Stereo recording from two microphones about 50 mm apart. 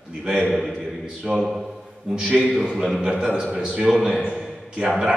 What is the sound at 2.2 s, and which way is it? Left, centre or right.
Speech, right.